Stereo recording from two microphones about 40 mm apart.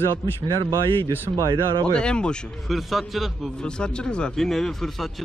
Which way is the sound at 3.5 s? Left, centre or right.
Left.